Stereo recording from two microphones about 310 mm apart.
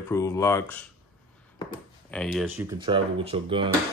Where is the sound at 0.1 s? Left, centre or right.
Centre.